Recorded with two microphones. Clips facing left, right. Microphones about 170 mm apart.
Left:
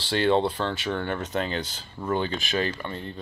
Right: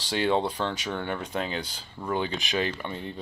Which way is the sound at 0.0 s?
10° right (ahead or behind).